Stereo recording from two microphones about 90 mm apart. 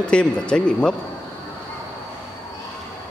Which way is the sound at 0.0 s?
10° left (ahead or behind).